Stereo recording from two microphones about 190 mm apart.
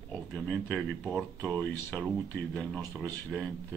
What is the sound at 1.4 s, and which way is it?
Speech, 15° right (ahead or behind).